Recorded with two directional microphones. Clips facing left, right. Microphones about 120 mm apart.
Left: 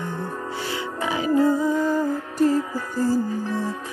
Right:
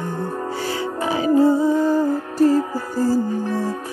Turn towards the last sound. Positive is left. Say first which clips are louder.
# right 3 dB
turn(degrees=-40)  # may be behind; listen again after turning